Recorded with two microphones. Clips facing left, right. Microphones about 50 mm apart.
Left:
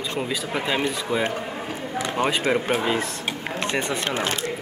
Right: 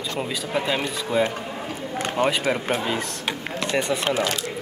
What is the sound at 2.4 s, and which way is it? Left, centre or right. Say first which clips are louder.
Speech: left 2 dB; centre.